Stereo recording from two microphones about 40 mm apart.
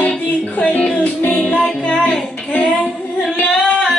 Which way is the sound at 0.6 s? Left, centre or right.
Left.